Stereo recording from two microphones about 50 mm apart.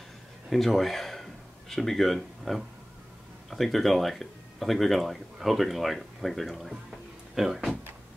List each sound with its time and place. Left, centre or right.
0.5 s speech: centre